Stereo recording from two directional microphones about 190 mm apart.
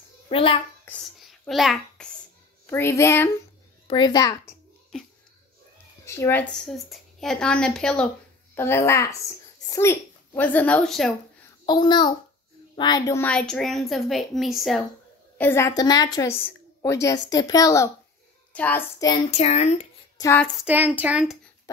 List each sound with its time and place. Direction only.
0.3 s a child's voice: 30° left (ahead or behind)
1.4 s a child's voice: centre (ahead or behind)
2.6 s a woman's voice: 10° left (ahead or behind)
3.8 s a woman's voice: 25° left (ahead or behind)
6.0 s speech: 15° left (ahead or behind)
6.5 s a woman's voice: centre (ahead or behind)
11.6 s a child's voice: 25° left (ahead or behind); by 14.9 s centre (ahead or behind)
15.3 s a woman's voice: 10° left (ahead or behind)
19.3 s speech: 35° left (ahead or behind)
20.2 s a sound: 15° left (ahead or behind)
20.4 s speech: 5° right (ahead or behind)